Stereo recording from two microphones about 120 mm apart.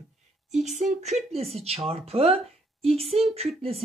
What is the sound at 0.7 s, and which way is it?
Speech, 85° right.